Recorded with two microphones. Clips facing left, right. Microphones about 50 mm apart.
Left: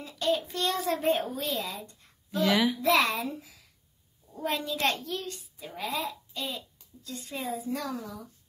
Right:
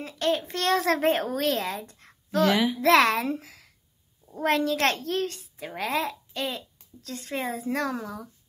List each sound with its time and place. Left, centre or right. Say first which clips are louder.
0.0 s speech: right 2 dB; right
2.4 s a child's voice: right 2 dB; centre
2.8 s speech: right 5 dB; right
4.4 s a child's voice: right 6 dB; right
4.9 s speech: right 7 dB; right
5.8 s speech: right 5 dB; right